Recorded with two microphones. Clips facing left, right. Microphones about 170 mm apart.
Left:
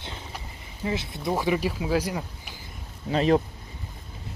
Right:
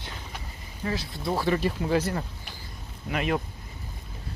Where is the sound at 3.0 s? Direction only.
30° left (ahead or behind).